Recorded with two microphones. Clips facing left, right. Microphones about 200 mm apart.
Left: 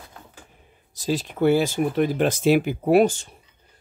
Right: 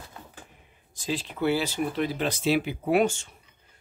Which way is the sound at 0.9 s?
40° left (ahead or behind).